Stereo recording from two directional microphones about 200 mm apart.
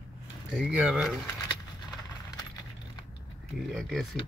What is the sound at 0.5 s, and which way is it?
Speech, 5° right (ahead or behind).